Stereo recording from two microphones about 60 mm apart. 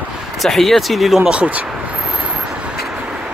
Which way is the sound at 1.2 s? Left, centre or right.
Centre.